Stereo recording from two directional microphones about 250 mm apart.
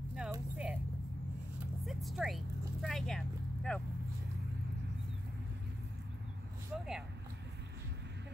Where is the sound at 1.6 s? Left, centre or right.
Centre.